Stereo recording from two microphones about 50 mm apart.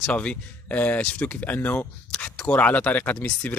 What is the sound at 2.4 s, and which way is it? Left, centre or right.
Speech, left.